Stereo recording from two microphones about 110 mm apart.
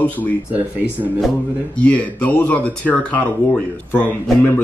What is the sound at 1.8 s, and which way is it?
Speech, 15° left (ahead or behind).